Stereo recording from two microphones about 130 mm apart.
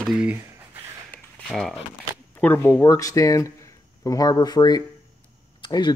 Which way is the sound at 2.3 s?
15° left (ahead or behind).